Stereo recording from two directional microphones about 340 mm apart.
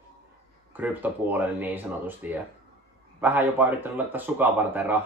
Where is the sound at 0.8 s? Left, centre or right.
Centre.